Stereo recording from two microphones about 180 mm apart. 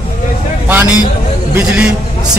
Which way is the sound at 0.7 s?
10° right (ahead or behind).